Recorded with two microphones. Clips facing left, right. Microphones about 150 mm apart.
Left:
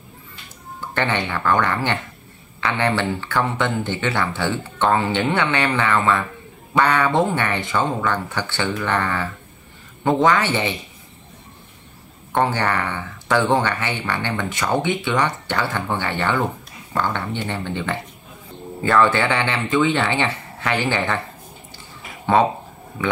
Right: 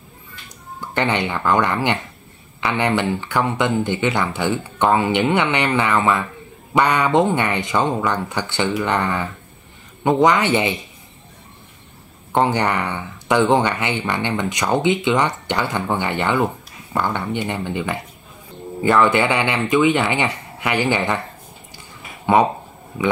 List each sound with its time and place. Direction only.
0.7 s speech: 15° right (ahead or behind)
12.3 s speech: 20° right (ahead or behind)
22.2 s speech: 15° right (ahead or behind)